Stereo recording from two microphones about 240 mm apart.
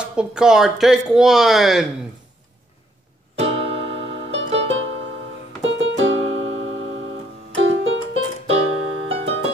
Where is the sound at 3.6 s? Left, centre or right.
Right.